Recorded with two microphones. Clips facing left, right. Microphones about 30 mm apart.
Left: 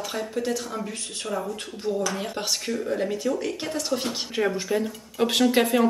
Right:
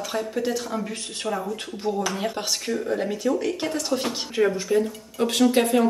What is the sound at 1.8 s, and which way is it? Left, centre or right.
Speech, right.